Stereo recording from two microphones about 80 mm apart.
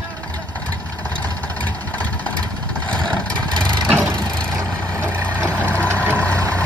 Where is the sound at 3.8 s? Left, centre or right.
Right.